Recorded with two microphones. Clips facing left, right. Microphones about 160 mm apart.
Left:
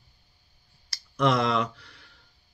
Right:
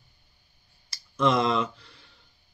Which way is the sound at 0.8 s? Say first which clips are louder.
Even; 25° right (ahead or behind).